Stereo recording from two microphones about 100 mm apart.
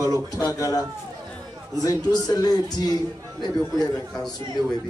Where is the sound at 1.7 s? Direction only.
40° left (ahead or behind).